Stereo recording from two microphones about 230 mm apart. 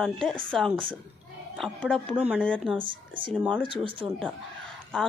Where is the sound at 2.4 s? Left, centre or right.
Centre.